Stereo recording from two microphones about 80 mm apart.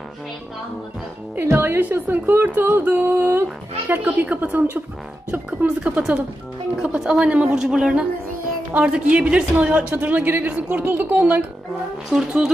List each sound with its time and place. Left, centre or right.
1.3 s speech: right
2.8 s music: right
3.8 s speech: right
12.1 s speech: centre